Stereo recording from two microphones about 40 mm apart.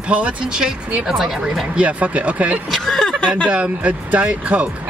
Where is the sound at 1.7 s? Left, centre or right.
Right.